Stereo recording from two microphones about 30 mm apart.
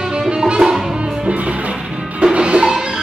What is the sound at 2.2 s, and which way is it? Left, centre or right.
Music, right.